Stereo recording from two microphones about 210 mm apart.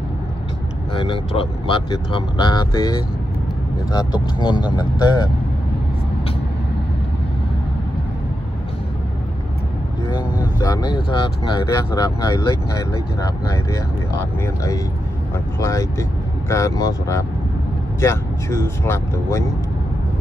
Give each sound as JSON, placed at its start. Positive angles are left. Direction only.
{"t": 0.9, "sound": "speech", "side_deg": 25}
{"t": 10.4, "sound": "speech", "side_deg": 15}